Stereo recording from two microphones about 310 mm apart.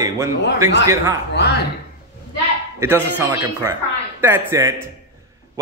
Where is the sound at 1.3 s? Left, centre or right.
Left.